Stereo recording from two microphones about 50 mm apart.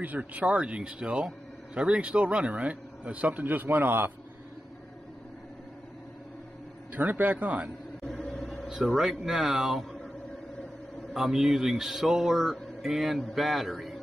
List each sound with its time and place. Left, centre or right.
0.0 s speech: right
6.9 s speech: right
8.0 s vehicle: centre
9.2 s speech: centre
11.1 s a man's voice: centre